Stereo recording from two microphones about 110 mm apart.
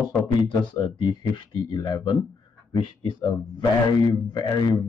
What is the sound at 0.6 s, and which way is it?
Speech, 45° left (ahead or behind).